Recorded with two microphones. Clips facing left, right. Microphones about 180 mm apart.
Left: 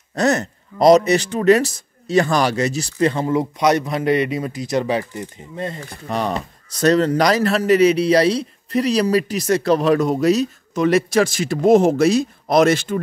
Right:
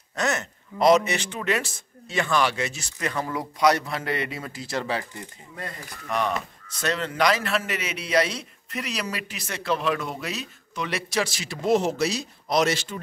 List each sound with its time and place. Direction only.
0.1 s speech: 35° left (ahead or behind); by 13.0 s 55° left (ahead or behind)